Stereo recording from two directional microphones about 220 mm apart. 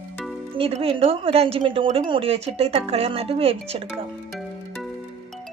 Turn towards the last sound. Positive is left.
turn(degrees=-25)  # may be behind; listen again after turning